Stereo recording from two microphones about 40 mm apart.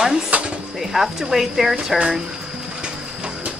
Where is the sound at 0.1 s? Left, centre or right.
Right.